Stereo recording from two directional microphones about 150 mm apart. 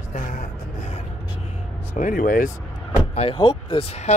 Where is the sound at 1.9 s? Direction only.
65° left (ahead or behind).